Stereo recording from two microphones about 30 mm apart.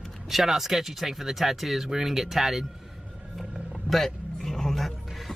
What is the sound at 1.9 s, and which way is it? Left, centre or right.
Speech, centre.